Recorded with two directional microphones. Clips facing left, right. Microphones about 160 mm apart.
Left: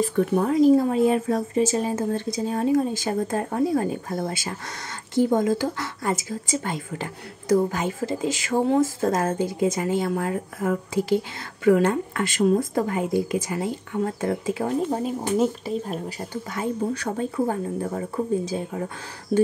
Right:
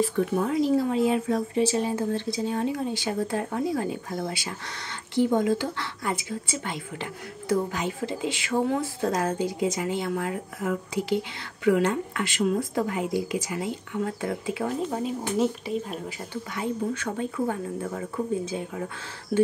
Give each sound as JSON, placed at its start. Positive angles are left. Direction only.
{"t": 0.2, "sound": "speech", "side_deg": 45}
{"t": 16.5, "sound": "a woman's voice", "side_deg": 40}